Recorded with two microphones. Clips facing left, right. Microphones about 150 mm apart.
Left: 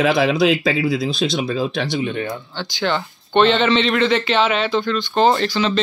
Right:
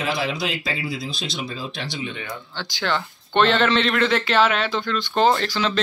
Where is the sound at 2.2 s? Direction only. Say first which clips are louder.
Left 7 dB; 30° left (ahead or behind).